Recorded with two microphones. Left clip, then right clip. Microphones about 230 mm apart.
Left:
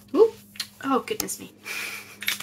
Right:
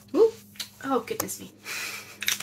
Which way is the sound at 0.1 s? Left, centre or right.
Centre.